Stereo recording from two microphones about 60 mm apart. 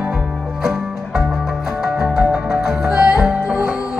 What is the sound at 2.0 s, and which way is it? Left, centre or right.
Music, centre.